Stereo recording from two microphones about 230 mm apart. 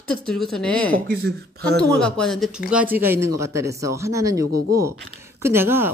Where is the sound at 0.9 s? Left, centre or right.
Right.